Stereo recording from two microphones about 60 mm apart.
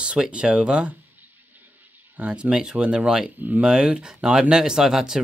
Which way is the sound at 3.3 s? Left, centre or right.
Right.